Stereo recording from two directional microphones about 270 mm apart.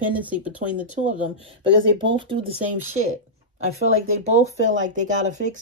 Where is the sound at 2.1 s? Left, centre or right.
Centre.